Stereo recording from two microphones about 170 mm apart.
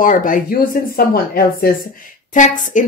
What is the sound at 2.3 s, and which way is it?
Speech, 50° left (ahead or behind).